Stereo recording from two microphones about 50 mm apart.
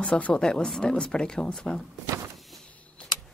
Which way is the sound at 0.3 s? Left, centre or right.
Centre.